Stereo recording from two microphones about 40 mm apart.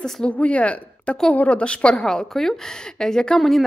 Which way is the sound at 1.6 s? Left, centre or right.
Left.